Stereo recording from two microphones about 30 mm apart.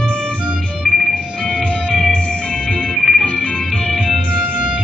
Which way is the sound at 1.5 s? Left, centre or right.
Left.